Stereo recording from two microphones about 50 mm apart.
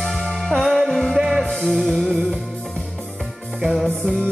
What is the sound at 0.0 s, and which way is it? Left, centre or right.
Music, centre.